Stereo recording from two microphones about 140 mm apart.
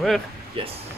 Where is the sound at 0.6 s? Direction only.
40° right (ahead or behind).